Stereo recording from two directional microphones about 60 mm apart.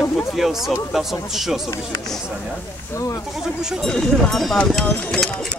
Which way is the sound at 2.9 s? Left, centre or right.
Left.